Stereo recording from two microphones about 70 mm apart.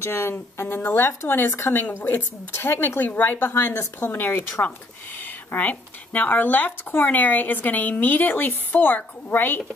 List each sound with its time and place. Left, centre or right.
0.0 s speech: left